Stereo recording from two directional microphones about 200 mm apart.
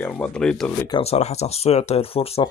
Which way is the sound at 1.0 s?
30° left (ahead or behind).